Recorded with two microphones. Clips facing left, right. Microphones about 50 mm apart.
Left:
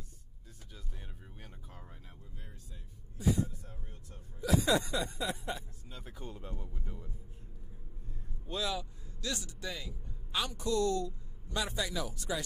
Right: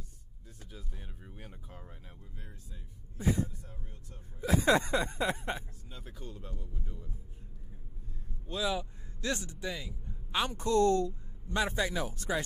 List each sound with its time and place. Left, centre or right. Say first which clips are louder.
0.7 s speech: right 2 dB; centre
3.2 s speech: even; right
5.9 s speech: even; centre
6.1 s speech: left 2 dB; centre
8.5 s speech: right 3 dB; centre
8.7 s speech: right 3 dB; right
9.6 s speech: right 3 dB; centre
10.0 s a man's voice: right 4 dB; right